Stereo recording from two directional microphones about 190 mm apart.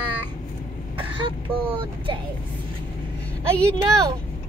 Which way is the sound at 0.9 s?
25° right (ahead or behind).